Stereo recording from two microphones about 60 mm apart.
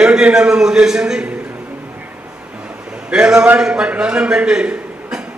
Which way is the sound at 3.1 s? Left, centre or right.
Centre.